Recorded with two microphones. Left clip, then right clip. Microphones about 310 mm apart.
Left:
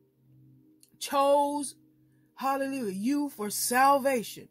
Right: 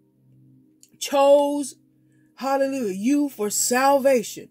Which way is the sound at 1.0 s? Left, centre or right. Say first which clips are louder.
Right 8 dB; centre.